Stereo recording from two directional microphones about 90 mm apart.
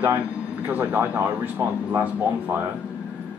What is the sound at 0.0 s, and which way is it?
Speech, 20° right (ahead or behind).